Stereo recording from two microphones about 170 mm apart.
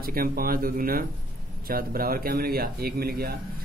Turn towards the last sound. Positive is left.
turn(degrees=-65)  # may be behind; listen again after turning